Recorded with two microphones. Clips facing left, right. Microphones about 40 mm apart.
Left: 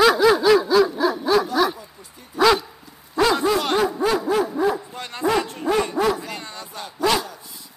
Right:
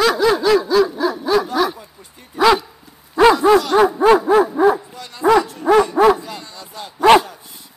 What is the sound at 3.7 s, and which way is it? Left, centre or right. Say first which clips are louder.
Snicker: right 8 dB; right.